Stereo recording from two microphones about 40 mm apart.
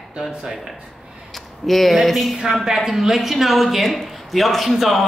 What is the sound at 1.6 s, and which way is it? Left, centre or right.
A man's voice, centre.